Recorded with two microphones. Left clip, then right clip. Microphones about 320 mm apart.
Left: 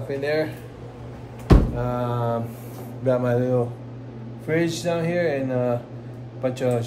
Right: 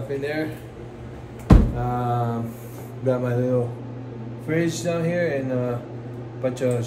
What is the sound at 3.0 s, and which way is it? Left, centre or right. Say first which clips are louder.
Speech: left 2 dB; centre.